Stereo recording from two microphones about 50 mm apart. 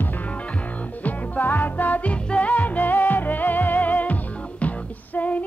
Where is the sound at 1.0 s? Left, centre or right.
Left.